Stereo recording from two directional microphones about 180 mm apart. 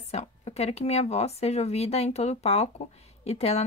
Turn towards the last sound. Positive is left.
turn(degrees=35)  # may be behind; listen again after turning